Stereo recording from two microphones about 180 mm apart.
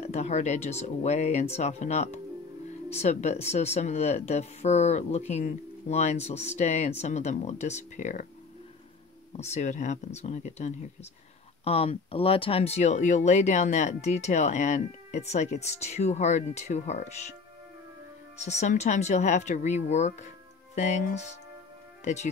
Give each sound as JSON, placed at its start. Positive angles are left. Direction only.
{"t": 0.0, "sound": "speech", "side_deg": 40}
{"t": 9.4, "sound": "speech", "side_deg": 40}
{"t": 18.4, "sound": "speech", "side_deg": 40}